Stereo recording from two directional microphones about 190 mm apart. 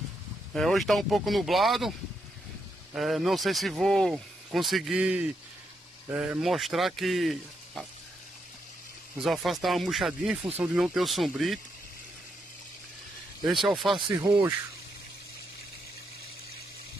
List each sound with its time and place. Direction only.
0.6 s speech: centre (ahead or behind)
9.2 s speech: centre (ahead or behind)
13.5 s speech: centre (ahead or behind)
14.1 s speech: 15° right (ahead or behind)